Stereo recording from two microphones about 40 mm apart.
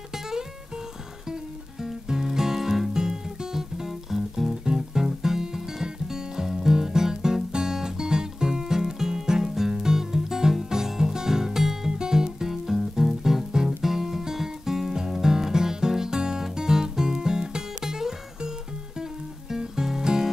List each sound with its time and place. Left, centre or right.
0.1 s music: centre
19.5 s music: centre